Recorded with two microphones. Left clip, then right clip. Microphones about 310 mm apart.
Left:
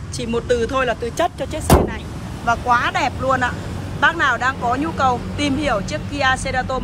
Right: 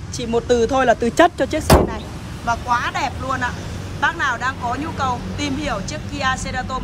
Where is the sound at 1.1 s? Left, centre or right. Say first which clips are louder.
Right 6 dB; right.